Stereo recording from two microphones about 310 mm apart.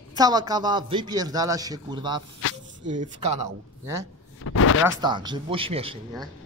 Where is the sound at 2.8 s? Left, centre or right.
Right.